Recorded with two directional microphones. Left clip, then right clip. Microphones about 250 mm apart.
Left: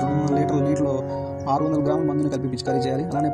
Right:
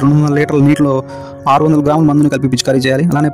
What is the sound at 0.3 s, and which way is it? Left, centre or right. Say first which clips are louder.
Speech: right 8 dB; right.